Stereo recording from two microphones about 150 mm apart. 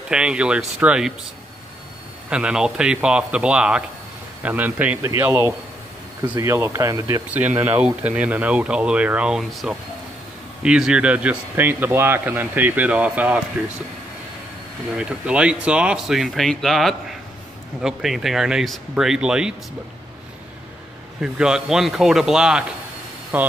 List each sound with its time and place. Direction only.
0.1 s speech: 5° right (ahead or behind)
2.2 s speech: 5° right (ahead or behind); by 7.2 s 20° right (ahead or behind)
7.2 s speech: 10° right (ahead or behind)
15.0 s speech: 5° right (ahead or behind)
21.2 s speech: 5° right (ahead or behind)